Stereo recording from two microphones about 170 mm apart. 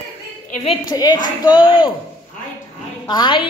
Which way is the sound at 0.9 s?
25° left (ahead or behind).